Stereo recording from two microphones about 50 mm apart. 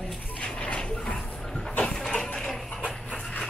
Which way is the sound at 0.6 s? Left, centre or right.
Left.